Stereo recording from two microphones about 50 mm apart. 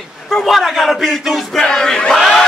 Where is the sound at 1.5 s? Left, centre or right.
Centre.